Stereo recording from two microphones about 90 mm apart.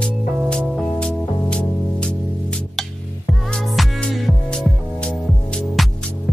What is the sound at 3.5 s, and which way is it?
Music, 5° left (ahead or behind).